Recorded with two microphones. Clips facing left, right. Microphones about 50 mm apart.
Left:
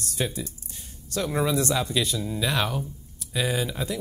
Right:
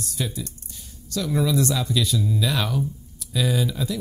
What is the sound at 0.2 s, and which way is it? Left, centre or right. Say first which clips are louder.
Speech: left 1 dB; left.